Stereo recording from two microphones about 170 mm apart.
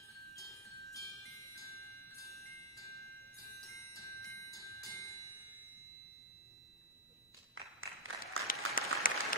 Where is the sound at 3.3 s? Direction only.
20° left (ahead or behind).